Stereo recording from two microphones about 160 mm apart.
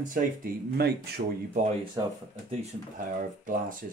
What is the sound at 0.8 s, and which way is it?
Speech, 80° right.